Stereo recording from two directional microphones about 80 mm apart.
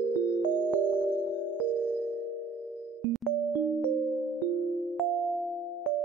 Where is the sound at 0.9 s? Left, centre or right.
Centre.